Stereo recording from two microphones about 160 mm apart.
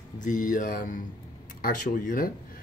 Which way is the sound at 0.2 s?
55° left (ahead or behind).